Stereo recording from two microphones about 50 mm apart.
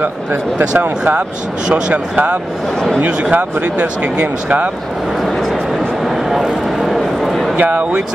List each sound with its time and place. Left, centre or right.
0.0 s speech: right
1.7 s speech: right
6.0 s a sound: centre
7.5 s speech: right